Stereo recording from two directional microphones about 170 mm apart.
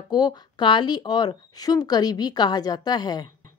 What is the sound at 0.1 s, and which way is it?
Speech, 25° left (ahead or behind).